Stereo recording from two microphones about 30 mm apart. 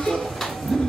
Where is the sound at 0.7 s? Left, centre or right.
Centre.